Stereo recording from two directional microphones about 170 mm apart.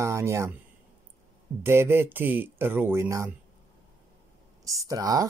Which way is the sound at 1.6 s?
15° right (ahead or behind).